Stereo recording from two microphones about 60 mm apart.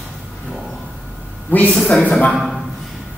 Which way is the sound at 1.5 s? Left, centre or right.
Left.